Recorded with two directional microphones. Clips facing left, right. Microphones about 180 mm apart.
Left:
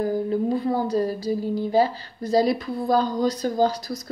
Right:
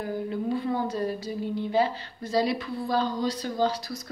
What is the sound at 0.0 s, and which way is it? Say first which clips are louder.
Speech: left 7 dB; 40° left (ahead or behind).